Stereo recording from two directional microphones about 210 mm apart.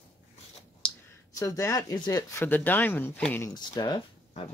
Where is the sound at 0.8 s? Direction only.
5° left (ahead or behind).